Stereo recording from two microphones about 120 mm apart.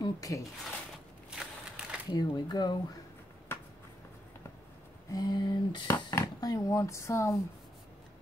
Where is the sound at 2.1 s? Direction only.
35° left (ahead or behind).